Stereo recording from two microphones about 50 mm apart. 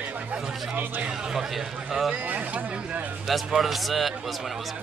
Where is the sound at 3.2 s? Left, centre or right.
Centre.